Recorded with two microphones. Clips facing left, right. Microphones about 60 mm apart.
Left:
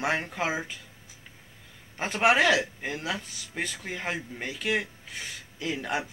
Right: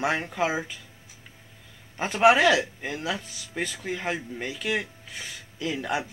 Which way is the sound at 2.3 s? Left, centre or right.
Left.